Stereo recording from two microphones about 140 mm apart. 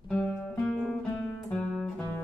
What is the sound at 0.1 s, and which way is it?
Music, 5° left (ahead or behind).